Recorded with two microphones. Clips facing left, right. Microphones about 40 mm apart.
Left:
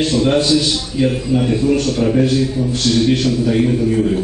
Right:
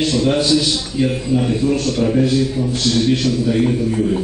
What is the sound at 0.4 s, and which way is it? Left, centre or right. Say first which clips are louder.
Speech: left 1 dB; left.